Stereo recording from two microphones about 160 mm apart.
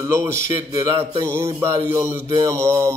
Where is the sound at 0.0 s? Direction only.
15° right (ahead or behind).